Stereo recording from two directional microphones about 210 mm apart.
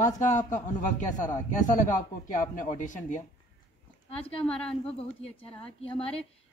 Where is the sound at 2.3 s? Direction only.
35° left (ahead or behind).